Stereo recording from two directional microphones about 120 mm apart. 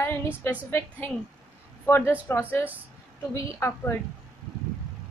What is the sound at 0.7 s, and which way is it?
A woman's voice, 15° left (ahead or behind).